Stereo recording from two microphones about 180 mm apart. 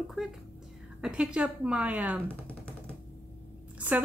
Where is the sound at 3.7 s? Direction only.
10° right (ahead or behind).